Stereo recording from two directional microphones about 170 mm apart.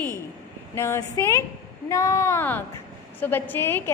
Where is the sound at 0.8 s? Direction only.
15° left (ahead or behind).